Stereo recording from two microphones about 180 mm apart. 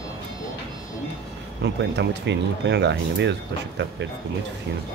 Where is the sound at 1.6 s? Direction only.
75° right (ahead or behind).